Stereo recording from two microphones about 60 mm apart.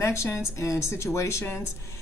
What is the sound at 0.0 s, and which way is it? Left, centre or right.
A woman's voice, left.